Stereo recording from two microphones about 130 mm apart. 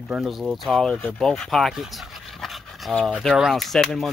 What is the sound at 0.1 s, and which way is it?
Speech, 5° right (ahead or behind).